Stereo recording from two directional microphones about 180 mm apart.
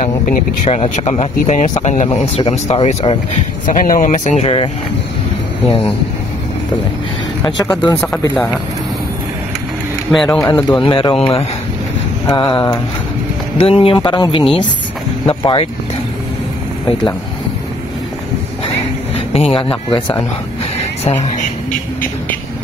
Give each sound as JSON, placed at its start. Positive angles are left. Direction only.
{"t": 0.0, "sound": "speech", "side_deg": 40}
{"t": 7.4, "sound": "speech", "side_deg": 20}
{"t": 10.1, "sound": "a man's voice", "side_deg": 5}
{"t": 10.8, "sound": "speech", "side_deg": 30}
{"t": 19.1, "sound": "speech", "side_deg": 30}
{"t": 21.0, "sound": "speech", "side_deg": 40}